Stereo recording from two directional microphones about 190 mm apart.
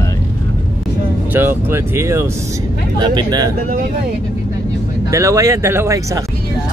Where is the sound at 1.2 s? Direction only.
10° right (ahead or behind).